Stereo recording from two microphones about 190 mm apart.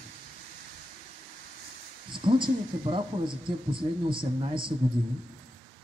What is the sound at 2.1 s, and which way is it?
Speech, 25° right (ahead or behind).